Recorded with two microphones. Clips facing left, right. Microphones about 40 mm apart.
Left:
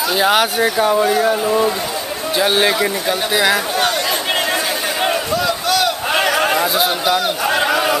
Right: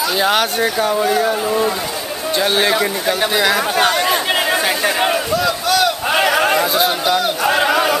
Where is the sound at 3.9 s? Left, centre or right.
Centre.